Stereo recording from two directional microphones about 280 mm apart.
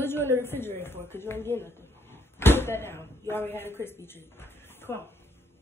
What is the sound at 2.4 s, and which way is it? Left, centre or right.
Speech, centre.